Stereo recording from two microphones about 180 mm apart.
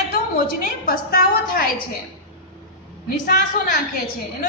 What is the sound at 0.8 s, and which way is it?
Speech, 55° left (ahead or behind).